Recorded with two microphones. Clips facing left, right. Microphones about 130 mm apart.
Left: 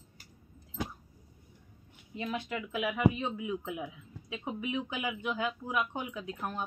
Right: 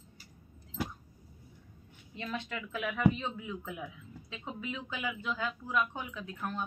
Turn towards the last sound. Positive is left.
turn(degrees=15)  # may be behind; listen again after turning